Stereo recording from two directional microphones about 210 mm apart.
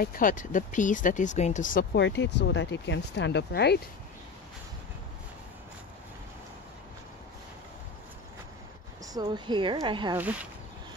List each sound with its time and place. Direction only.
0.0 s speech: 40° left (ahead or behind)
2.0 s speech: 55° left (ahead or behind)
9.0 s a woman's voice: 20° right (ahead or behind)
10.1 s speech: 5° right (ahead or behind)